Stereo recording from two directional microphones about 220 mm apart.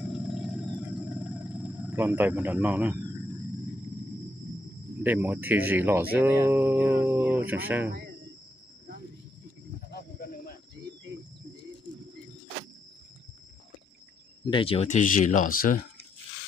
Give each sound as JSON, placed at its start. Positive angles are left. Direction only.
{"t": 0.0, "sound": "a sound", "side_deg": -5}
{"t": 5.0, "sound": "speech", "side_deg": -10}
{"t": 9.8, "sound": "snake", "side_deg": 45}
{"t": 14.4, "sound": "speech", "side_deg": 25}